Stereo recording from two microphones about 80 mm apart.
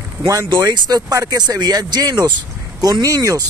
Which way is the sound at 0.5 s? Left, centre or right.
Right.